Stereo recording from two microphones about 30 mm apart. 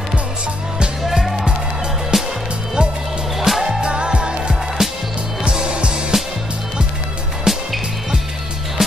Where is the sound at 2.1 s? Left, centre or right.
Centre.